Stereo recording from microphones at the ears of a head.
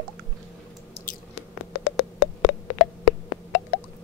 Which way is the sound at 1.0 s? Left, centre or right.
Left.